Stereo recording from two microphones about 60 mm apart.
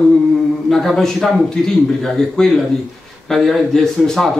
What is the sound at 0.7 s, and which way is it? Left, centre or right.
A man's voice, centre.